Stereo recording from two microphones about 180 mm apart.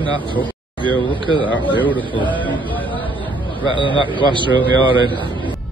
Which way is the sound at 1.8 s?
10° left (ahead or behind).